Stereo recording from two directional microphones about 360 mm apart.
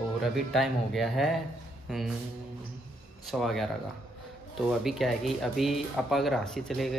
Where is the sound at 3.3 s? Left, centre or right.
Centre.